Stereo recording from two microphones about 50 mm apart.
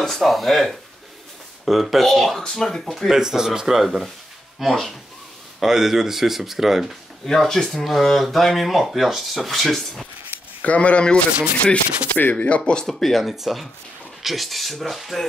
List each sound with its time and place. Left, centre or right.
0.0 s speech: centre
3.1 s speech: centre
7.2 s speech: centre
10.6 s speech: left
12.8 s speech: centre